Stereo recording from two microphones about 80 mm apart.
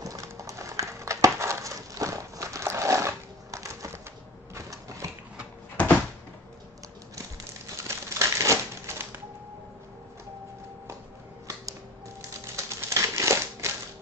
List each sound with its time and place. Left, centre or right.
0.0 s a sound: right
5.8 s door: centre
7.7 s typewriter: right
12.5 s typewriter: right